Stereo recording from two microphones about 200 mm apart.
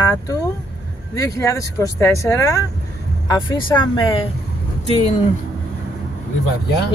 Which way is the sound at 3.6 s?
25° left (ahead or behind).